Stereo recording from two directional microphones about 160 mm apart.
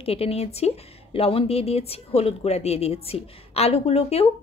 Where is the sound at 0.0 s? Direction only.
35° left (ahead or behind).